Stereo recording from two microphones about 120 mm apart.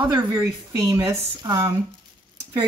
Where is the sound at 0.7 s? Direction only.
20° right (ahead or behind).